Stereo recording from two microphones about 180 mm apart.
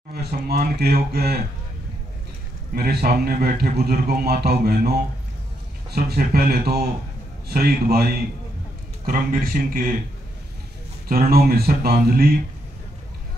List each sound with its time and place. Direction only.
0.1 s a man's voice: 60° right (ahead or behind)
2.7 s a man's voice: 60° right (ahead or behind)
11.1 s a man's voice: 55° right (ahead or behind)